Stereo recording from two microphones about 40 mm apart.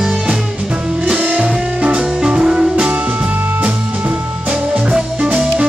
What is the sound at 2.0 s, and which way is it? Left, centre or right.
Music, centre.